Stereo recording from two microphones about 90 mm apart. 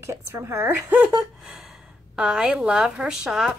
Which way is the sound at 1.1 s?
5° right (ahead or behind).